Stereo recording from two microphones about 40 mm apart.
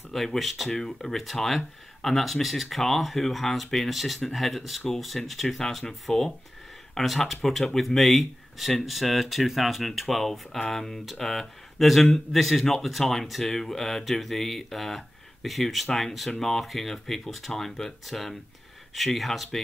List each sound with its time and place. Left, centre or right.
0.1 s speech: centre
0.7 s speech: centre